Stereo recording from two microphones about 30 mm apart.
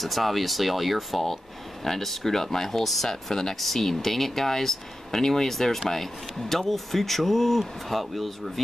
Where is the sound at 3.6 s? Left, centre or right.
Centre.